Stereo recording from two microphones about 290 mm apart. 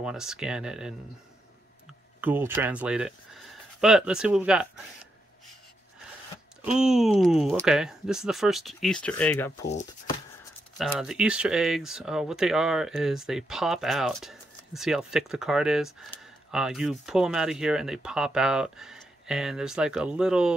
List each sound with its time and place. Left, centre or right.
0.0 s speech: centre
2.2 s speech: centre
6.8 s speech: centre
9.7 s speech: left
10.8 s speech: centre